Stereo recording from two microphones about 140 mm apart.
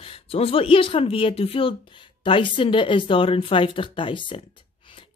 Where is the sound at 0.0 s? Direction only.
40° left (ahead or behind).